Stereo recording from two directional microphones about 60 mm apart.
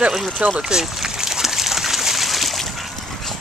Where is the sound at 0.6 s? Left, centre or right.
Centre.